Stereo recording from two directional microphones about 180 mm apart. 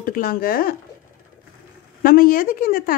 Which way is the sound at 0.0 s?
55° left (ahead or behind).